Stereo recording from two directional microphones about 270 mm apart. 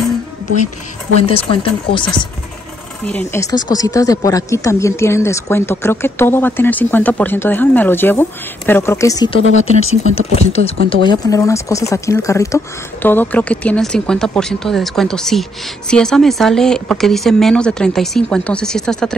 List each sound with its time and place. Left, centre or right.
1.2 s speech: centre